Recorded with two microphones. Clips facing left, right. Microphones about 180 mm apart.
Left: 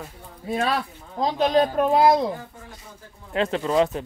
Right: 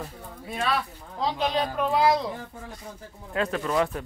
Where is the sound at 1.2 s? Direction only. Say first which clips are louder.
Left 6 dB; 45° left (ahead or behind).